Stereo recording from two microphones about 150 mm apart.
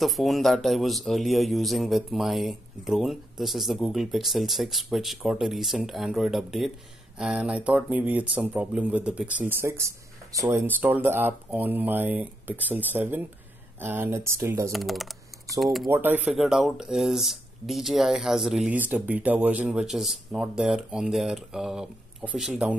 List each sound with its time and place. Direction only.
0.0 s speech: centre (ahead or behind); by 14.7 s 20° right (ahead or behind)
14.7 s typing: centre (ahead or behind)
15.6 s speech: centre (ahead or behind)
15.9 s speech: 15° right (ahead or behind)
16.3 s speech: centre (ahead or behind)